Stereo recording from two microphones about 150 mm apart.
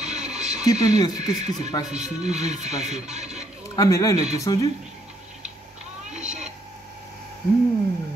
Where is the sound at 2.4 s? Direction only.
50° right (ahead or behind).